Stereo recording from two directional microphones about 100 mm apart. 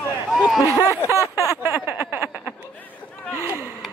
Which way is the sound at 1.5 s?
20° right (ahead or behind).